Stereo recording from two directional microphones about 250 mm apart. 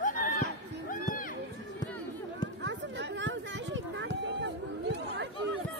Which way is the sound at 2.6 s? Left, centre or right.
Right.